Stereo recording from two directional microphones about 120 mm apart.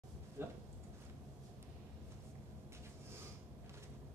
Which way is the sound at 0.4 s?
20° right (ahead or behind).